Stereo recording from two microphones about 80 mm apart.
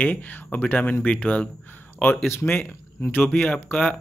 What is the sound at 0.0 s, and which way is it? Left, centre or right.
Speech, centre.